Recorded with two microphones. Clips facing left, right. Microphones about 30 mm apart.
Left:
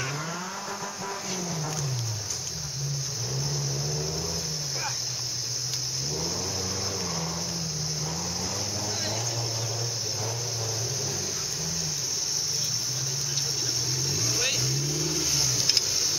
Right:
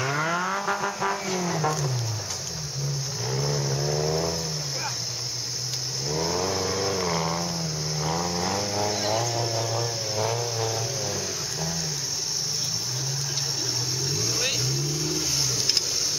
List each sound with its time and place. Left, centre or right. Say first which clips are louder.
0.1 s vehicle: right 8 dB; right
3.3 s vehicle: right 7 dB; right
6.0 s vehicle: right 9 dB; right
7.4 s vehicle: right 3 dB; centre
8.0 s vehicle: right 6 dB; right
8.9 s vehicle: right 6 dB; centre
14.0 s vehicle: right 1 dB; centre